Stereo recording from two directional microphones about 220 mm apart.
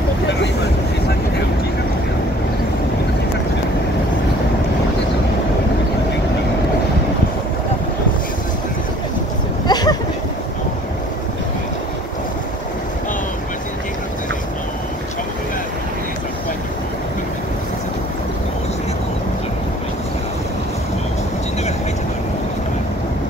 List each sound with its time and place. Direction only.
9.7 s vehicle: 20° left (ahead or behind)